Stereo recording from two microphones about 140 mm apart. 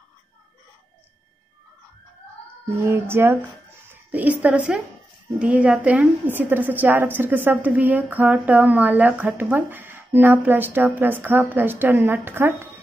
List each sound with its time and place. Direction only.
2.8 s a woman's voice: 20° right (ahead or behind)